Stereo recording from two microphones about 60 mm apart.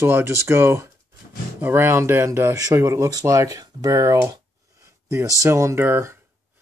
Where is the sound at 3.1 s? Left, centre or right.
Right.